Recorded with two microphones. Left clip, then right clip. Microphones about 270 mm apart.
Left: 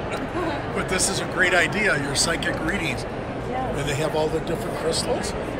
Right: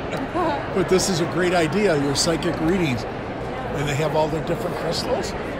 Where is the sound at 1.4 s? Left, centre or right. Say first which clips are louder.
Left 1 dB; centre.